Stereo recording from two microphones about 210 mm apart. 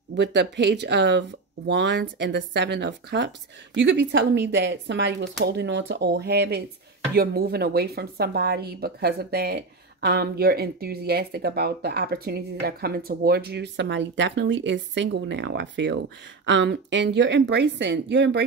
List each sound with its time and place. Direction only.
0.1 s a woman's voice: 55° right (ahead or behind)